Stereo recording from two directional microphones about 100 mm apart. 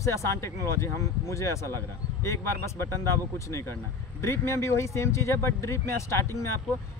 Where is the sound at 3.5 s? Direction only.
30° left (ahead or behind).